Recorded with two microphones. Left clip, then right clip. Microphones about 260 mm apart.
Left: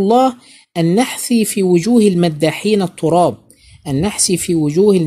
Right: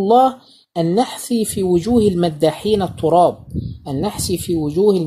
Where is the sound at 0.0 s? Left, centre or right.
Left.